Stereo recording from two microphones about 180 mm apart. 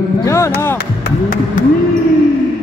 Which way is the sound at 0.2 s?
15° left (ahead or behind).